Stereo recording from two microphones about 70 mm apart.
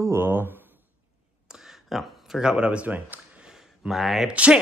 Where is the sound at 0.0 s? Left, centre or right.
Right.